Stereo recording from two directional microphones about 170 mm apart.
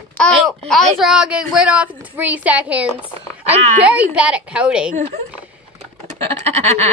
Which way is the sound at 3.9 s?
10° right (ahead or behind).